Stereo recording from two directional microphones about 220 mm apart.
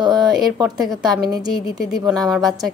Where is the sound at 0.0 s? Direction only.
20° right (ahead or behind).